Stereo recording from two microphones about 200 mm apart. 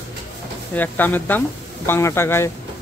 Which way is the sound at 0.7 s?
10° left (ahead or behind).